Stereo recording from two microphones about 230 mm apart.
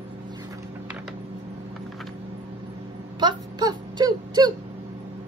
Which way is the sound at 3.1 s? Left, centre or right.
Centre.